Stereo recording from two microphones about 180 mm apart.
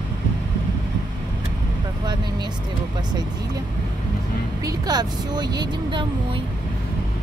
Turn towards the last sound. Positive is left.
turn(degrees=-25)  # may be behind; listen again after turning